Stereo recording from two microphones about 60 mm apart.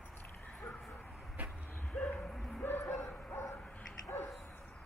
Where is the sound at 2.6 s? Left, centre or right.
Left.